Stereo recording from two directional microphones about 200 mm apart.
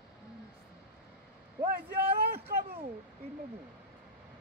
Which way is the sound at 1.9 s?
55° right (ahead or behind).